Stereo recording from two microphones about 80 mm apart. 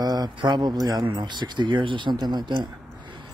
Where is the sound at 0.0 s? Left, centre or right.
Right.